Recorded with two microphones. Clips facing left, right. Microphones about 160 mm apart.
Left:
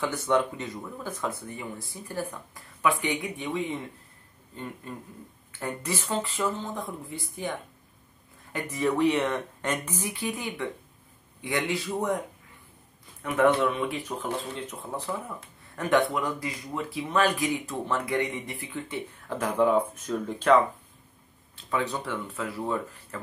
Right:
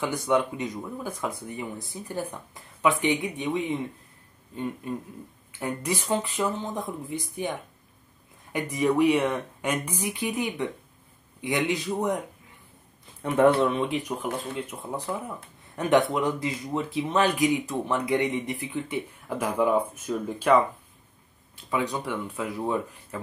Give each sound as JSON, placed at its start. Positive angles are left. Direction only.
{"t": 0.0, "sound": "speech", "side_deg": -15}
{"t": 4.8, "sound": "speech", "side_deg": -15}
{"t": 8.5, "sound": "speech", "side_deg": -15}
{"t": 13.6, "sound": "speech", "side_deg": -30}
{"t": 13.9, "sound": "speech", "side_deg": -10}